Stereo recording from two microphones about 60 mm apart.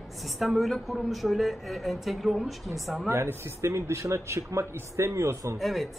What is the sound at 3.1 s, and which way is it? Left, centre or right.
A man's voice, right.